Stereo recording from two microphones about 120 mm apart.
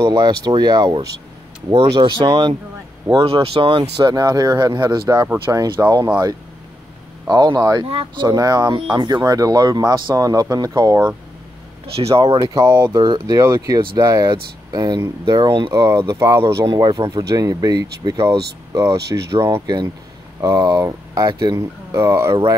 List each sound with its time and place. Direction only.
0.0 s speech: 35° right (ahead or behind)
4.1 s speech: 30° right (ahead or behind)
7.2 s speech: 35° right (ahead or behind)
7.9 s speech: 50° right (ahead or behind)
8.3 s speech: 35° right (ahead or behind)
11.9 s speech: 55° right (ahead or behind)
12.3 s speech: 40° right (ahead or behind)
12.6 s speech: 25° right (ahead or behind)
16.6 s speech: 35° right (ahead or behind)